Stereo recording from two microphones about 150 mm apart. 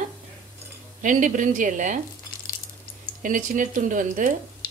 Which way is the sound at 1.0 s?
55° right (ahead or behind).